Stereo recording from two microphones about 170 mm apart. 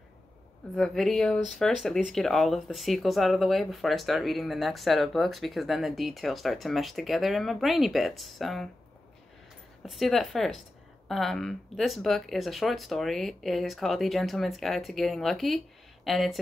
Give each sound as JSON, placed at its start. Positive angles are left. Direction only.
{"t": 0.7, "sound": "speech", "side_deg": 0}
{"t": 9.8, "sound": "speech", "side_deg": 0}